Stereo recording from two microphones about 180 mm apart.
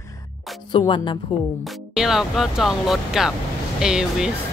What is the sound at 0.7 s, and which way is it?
Speech, 25° left (ahead or behind).